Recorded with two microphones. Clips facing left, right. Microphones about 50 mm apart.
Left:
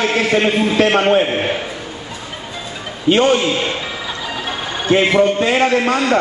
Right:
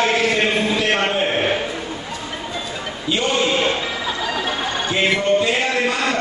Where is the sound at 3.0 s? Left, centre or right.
Left.